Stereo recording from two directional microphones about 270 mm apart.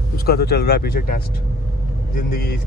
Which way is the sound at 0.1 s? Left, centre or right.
Left.